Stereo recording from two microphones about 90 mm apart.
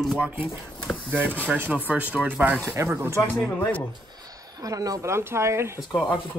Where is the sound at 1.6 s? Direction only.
20° right (ahead or behind).